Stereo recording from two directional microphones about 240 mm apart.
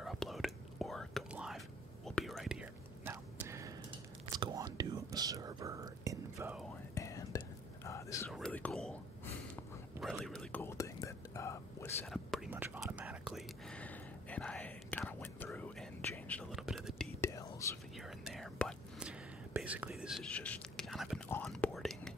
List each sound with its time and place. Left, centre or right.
0.0 s whispering: centre
7.0 s whispering: centre
17.2 s whispering: centre
17.9 s whispering: centre